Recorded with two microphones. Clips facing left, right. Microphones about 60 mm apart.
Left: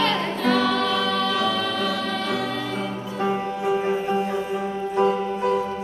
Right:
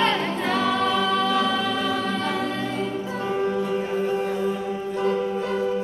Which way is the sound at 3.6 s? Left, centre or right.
Centre.